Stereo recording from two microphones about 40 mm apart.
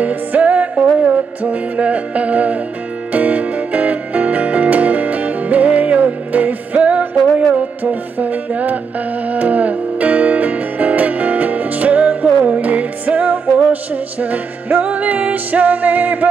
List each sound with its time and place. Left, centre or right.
0.0 s music: right